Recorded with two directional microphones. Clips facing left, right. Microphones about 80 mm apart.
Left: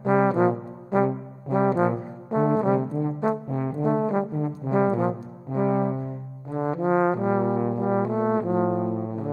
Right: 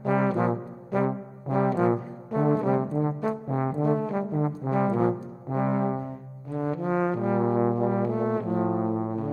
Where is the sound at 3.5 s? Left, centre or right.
Right.